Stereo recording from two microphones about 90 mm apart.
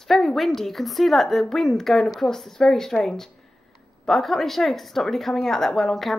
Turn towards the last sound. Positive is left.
turn(degrees=0)  # may be behind; listen again after turning